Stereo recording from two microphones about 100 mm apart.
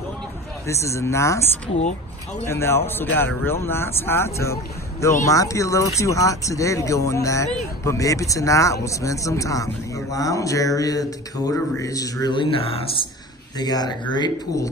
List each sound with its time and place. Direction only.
0.7 s speech: 30° left (ahead or behind)
12.3 s speech: 60° left (ahead or behind)
13.6 s speech: 45° left (ahead or behind)